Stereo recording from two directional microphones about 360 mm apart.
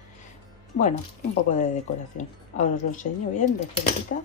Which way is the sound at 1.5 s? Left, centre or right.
Left.